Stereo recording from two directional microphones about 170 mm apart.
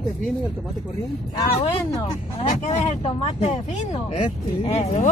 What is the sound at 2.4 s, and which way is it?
Speech, 40° left (ahead or behind).